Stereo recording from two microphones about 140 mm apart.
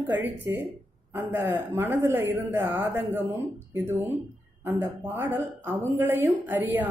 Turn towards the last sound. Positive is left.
turn(degrees=-15)  # may be behind; listen again after turning